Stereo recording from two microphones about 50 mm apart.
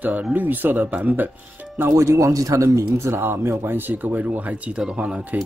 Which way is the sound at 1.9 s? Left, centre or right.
Right.